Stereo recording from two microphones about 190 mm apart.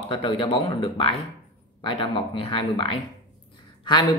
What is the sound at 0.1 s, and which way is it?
Speech, 25° left (ahead or behind).